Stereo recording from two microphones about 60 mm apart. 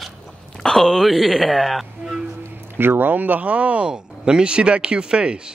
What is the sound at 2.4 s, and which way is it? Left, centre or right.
Speech, right.